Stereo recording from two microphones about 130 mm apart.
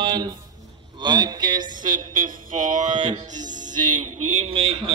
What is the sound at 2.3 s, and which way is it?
Speech, 75° right (ahead or behind).